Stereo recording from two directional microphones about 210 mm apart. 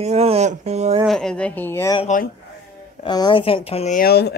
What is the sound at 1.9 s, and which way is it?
Speech, 35° left (ahead or behind).